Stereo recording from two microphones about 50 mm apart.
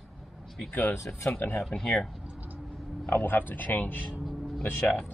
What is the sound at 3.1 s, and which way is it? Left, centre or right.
A man's voice, left.